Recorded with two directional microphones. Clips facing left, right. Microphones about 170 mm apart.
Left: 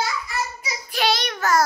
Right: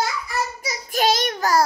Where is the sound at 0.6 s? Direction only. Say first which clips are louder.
Right 4 dB; 45° right (ahead or behind).